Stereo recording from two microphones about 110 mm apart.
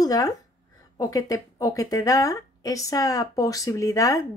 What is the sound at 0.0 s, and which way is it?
A woman's voice, 35° left (ahead or behind).